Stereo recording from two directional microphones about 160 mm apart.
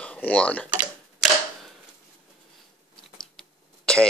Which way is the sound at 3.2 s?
5° left (ahead or behind).